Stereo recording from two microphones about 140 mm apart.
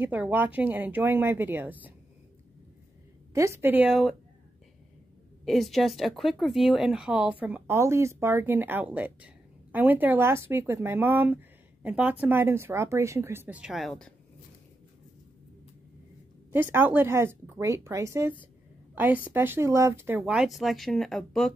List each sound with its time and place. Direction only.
0.0 s speech: 10° right (ahead or behind)
3.3 s speech: 20° right (ahead or behind)
3.9 s speech: centre (ahead or behind)
5.4 s speech: centre (ahead or behind)
16.5 s speech: 15° right (ahead or behind)
20.2 s speech: 5° right (ahead or behind)